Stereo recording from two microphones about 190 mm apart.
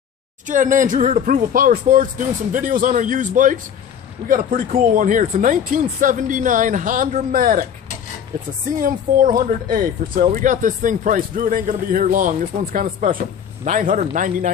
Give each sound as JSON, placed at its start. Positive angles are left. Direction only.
{"t": 0.5, "sound": "speech", "side_deg": -45}
{"t": 8.7, "sound": "speech", "side_deg": -45}